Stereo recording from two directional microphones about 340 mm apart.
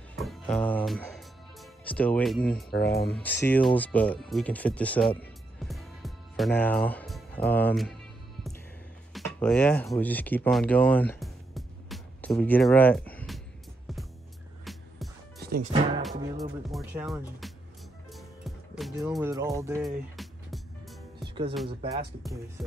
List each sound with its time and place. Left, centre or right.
0.2 s music: centre
2.7 s speech: left
3.1 s speech: centre
9.1 s speech: centre
14.6 s music: centre
15.4 s speech: right
16.0 s speech: centre
18.1 s music: centre
21.2 s music: centre
22.6 s speech: centre